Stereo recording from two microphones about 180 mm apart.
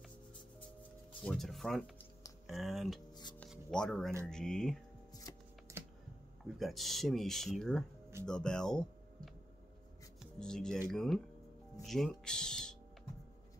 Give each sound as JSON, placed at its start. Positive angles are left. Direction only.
{"t": 1.2, "sound": "speech", "side_deg": 5}
{"t": 3.4, "sound": "a sound", "side_deg": 5}
{"t": 4.3, "sound": "speech", "side_deg": 5}
{"t": 5.3, "sound": "shuffling cards", "side_deg": 15}
{"t": 5.7, "sound": "computer keyboard", "side_deg": -15}
{"t": 6.6, "sound": "speech", "side_deg": 0}
{"t": 10.4, "sound": "speech", "side_deg": 5}